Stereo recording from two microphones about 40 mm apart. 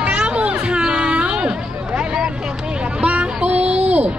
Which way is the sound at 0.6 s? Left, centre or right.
Right.